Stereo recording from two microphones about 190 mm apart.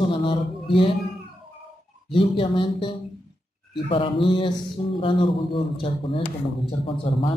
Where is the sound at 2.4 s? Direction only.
25° left (ahead or behind).